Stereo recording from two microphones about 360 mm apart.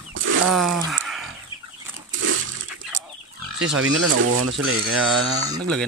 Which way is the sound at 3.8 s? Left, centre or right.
Right.